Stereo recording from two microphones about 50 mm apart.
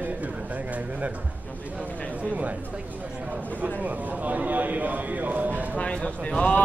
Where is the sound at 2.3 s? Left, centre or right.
Right.